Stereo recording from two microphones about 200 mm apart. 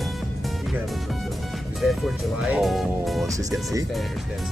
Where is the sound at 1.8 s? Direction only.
Centre (ahead or behind).